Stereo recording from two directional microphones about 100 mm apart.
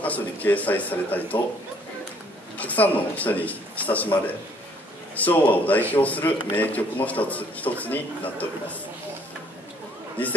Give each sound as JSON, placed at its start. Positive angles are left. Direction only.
{"t": 0.0, "sound": "a man's voice", "side_deg": 15}
{"t": 2.5, "sound": "a man's voice", "side_deg": 15}